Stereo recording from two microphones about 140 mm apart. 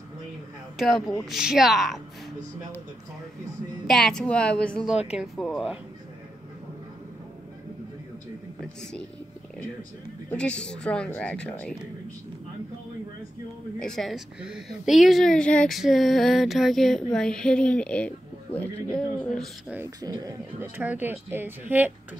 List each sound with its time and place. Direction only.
0.7 s a woman's voice: centre (ahead or behind)
3.8 s a woman's voice: centre (ahead or behind)
10.3 s a woman's voice: 10° left (ahead or behind)
13.7 s a woman's voice: 5° left (ahead or behind)
20.0 s speech: 25° right (ahead or behind)
20.6 s speech: 10° right (ahead or behind)